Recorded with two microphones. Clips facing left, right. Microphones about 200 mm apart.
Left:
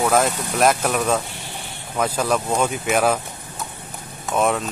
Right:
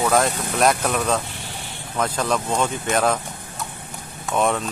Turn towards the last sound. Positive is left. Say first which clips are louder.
# left 1 dB
turn(degrees=0)  # may be behind; listen again after turning